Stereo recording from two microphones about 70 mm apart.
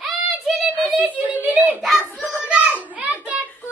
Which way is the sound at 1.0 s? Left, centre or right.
Right.